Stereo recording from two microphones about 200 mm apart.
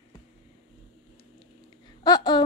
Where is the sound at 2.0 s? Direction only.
20° left (ahead or behind).